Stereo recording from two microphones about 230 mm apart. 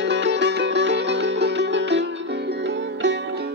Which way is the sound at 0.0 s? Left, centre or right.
Right.